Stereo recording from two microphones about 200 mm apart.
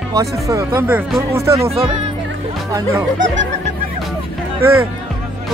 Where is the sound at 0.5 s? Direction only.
15° right (ahead or behind).